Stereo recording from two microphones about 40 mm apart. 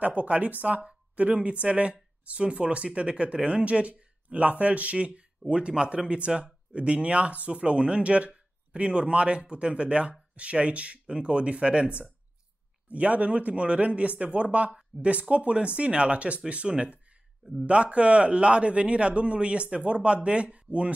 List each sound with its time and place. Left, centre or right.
0.0 s speech: right